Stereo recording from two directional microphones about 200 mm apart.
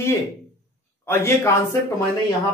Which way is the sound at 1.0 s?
15° left (ahead or behind).